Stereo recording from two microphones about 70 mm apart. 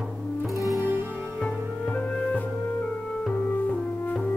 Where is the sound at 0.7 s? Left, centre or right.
Right.